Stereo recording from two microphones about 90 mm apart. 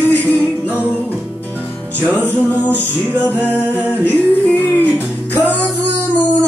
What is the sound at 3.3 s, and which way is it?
A capella, 20° right (ahead or behind).